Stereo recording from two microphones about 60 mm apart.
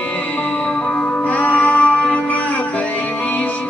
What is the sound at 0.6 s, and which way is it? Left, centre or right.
Music, centre.